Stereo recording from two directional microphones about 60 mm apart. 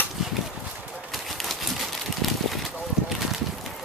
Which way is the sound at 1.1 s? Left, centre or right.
Centre.